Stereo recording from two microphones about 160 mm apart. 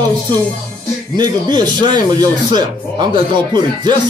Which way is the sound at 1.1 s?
25° right (ahead or behind).